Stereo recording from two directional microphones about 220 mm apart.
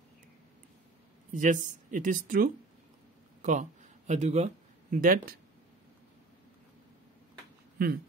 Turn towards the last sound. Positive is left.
turn(degrees=-45)  # may be behind; listen again after turning